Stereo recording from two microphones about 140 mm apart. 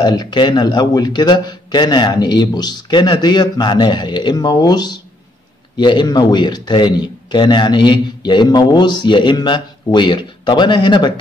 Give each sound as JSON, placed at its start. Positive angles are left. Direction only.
{"t": 0.0, "sound": "a man's voice", "side_deg": 30}